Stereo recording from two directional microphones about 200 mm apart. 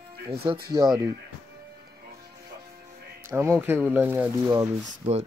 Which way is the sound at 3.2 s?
15° right (ahead or behind).